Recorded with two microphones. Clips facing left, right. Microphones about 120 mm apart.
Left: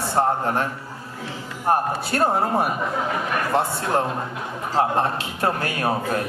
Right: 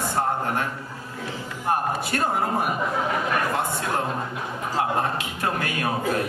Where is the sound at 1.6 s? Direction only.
40° left (ahead or behind).